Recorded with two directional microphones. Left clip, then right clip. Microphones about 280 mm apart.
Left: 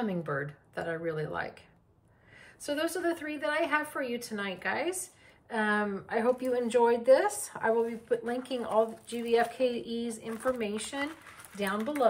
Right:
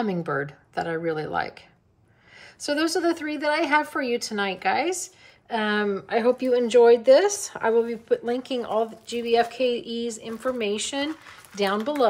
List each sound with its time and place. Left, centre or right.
0.0 s speech: centre